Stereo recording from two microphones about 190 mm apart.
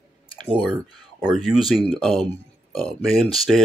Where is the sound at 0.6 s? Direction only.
5° right (ahead or behind).